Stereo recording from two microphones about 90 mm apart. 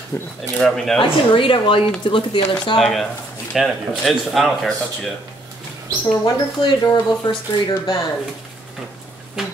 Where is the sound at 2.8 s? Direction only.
Centre (ahead or behind).